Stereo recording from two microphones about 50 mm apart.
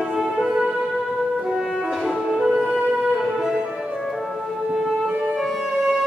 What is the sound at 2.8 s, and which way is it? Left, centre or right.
Music, right.